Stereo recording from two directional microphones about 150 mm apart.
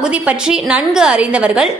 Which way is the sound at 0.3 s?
5° right (ahead or behind).